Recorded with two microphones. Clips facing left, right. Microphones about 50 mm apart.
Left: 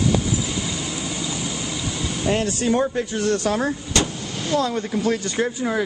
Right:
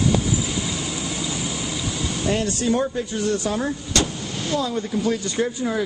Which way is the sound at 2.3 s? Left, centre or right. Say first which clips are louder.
Left 1 dB; left.